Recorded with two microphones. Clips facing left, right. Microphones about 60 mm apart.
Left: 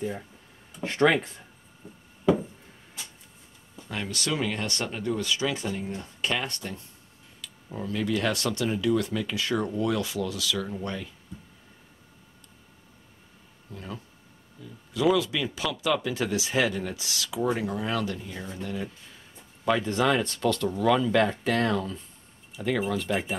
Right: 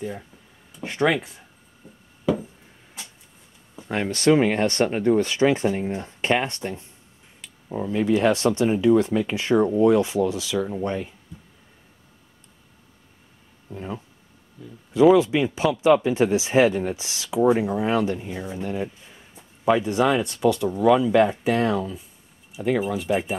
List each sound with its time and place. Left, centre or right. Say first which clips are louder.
0.7 s speech: even; centre
1.8 s a sound: left 1 dB; centre
3.9 s speech: right 12 dB; right
13.7 s speech: right 6 dB; right
15.1 s speech: right 8 dB; right; by 23.3 s centre